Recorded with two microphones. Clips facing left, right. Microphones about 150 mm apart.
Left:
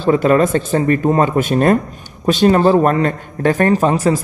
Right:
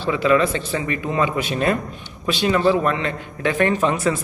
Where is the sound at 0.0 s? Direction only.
45° left (ahead or behind).